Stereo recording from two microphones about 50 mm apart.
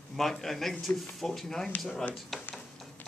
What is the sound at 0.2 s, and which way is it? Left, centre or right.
Speech, centre.